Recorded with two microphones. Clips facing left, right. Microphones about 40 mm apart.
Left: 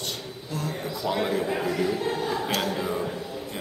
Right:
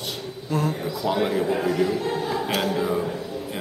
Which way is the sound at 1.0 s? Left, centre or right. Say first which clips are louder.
Right 3 dB; centre.